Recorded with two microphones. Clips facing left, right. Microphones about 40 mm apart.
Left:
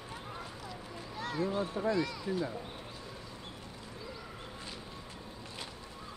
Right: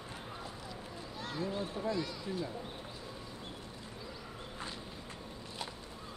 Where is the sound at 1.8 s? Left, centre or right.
Left.